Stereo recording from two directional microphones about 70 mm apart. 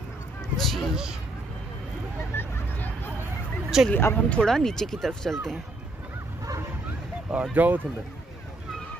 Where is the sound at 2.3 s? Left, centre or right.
Left.